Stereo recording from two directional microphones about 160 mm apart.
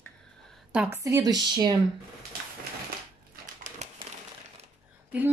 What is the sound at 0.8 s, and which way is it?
Speech, 20° right (ahead or behind).